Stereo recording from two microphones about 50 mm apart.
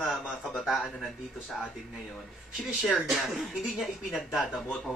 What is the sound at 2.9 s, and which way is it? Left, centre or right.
Speech, centre.